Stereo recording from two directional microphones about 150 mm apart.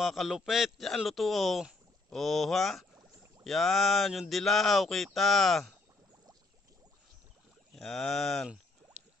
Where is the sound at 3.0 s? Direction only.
20° right (ahead or behind).